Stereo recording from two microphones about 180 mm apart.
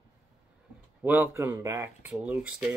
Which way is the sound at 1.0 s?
10° right (ahead or behind).